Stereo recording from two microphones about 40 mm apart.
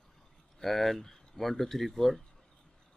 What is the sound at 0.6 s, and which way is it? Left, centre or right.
Speech, centre.